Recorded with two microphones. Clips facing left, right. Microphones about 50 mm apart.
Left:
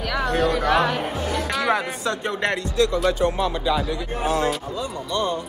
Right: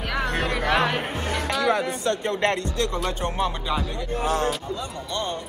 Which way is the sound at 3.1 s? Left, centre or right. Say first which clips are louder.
Left 5 dB; right.